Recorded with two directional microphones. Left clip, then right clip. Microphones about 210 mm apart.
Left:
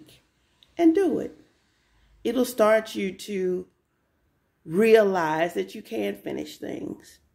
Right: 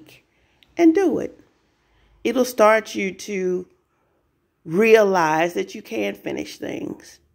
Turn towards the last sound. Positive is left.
turn(degrees=-25)  # may be behind; listen again after turning